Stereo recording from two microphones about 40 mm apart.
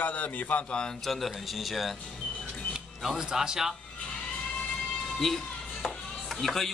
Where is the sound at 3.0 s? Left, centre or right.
Centre.